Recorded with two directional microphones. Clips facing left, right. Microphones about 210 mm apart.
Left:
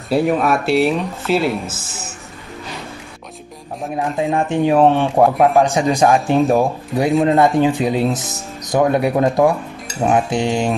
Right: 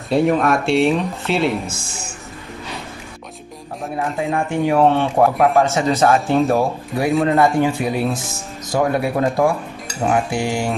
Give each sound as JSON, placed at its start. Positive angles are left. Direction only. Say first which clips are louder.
{"t": 0.1, "sound": "speech", "louder": "even", "side_deg": 5}
{"t": 3.9, "sound": "speech", "louder": "left 2 dB", "side_deg": 15}